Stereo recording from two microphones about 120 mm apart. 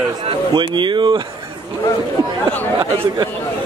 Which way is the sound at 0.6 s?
40° right (ahead or behind).